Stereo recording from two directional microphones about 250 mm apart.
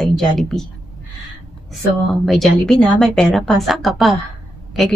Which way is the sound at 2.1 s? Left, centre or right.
Centre.